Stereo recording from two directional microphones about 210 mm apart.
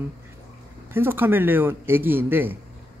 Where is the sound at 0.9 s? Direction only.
10° right (ahead or behind).